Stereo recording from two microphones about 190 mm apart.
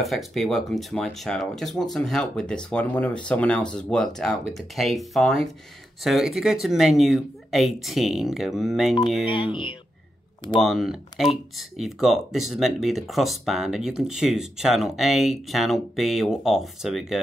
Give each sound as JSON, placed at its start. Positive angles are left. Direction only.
{"t": 0.0, "sound": "speech", "side_deg": 0}
{"t": 9.3, "sound": "speech", "side_deg": 25}
{"t": 10.6, "sound": "speech", "side_deg": 0}